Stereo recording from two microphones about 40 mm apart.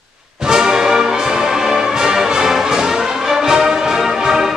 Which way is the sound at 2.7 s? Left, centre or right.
Centre.